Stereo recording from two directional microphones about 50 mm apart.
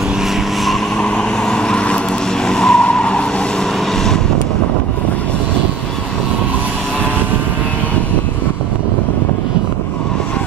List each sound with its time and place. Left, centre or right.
1.0 s vehicle: centre
2.4 s skidding: centre
2.8 s vehicle: left